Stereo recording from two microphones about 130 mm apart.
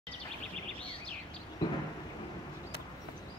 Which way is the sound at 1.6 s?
30° left (ahead or behind).